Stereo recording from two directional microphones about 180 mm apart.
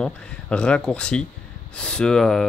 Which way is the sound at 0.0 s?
5° left (ahead or behind).